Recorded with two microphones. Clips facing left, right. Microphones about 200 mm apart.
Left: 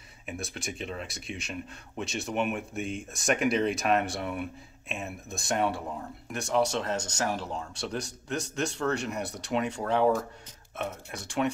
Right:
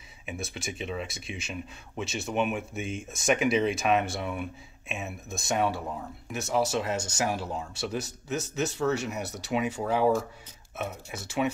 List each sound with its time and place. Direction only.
0.3 s speech: centre (ahead or behind)